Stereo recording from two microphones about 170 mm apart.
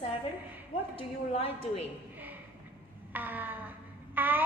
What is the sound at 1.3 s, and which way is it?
Speech, 40° left (ahead or behind).